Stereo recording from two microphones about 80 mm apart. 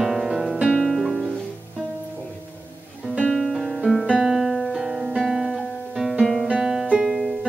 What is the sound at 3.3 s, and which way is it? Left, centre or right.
Music, centre.